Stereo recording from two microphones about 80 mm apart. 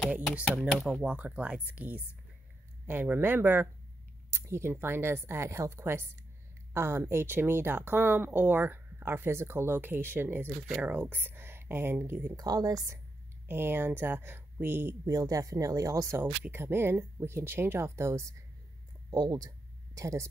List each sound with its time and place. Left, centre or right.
0.6 s speech: centre
1.0 s speech: centre
12.4 s speech: right
13.5 s speech: right
15.0 s speech: right
16.4 s speech: right
19.3 s a sound: right